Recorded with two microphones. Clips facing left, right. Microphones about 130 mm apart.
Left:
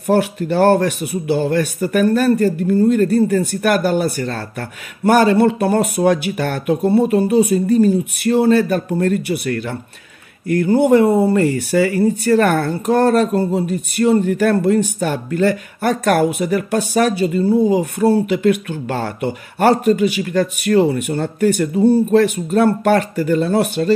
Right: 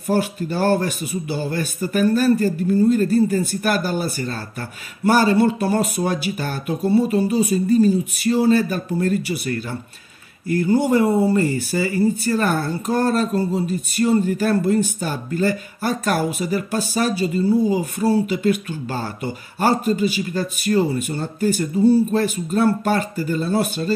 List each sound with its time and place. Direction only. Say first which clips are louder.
0.0 s a man's voice: left 5 dB; 60° left (ahead or behind)